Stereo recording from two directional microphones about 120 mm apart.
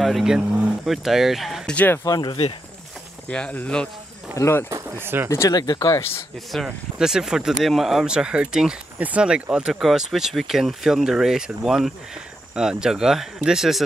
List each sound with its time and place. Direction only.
0.0 s speech: centre (ahead or behind)
2.0 s speech: 30° left (ahead or behind)
3.3 s speech: 10° left (ahead or behind)
4.6 s speech: 25° right (ahead or behind)
5.3 s speech: 30° left (ahead or behind)
6.5 s speech: centre (ahead or behind)